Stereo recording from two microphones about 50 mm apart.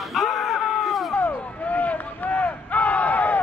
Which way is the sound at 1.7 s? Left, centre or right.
Left.